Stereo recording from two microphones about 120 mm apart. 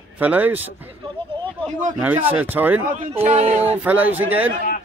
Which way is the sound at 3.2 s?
60° right (ahead or behind).